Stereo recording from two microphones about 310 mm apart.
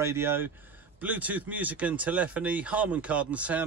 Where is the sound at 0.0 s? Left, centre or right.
Centre.